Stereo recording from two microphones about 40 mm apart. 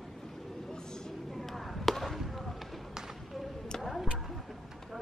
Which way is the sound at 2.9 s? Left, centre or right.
Centre.